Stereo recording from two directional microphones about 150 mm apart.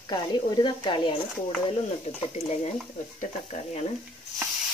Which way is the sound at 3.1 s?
50° left (ahead or behind).